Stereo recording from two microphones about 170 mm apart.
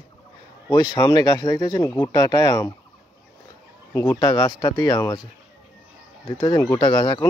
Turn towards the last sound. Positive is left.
turn(degrees=25)  # may be behind; listen again after turning